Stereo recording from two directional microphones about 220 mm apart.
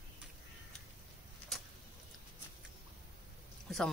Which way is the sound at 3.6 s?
Centre (ahead or behind).